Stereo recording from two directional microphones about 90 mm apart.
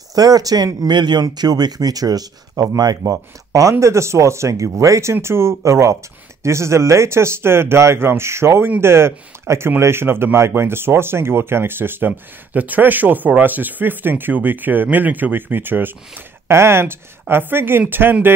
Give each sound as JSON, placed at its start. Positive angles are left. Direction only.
{"t": 0.1, "sound": "speech", "side_deg": -45}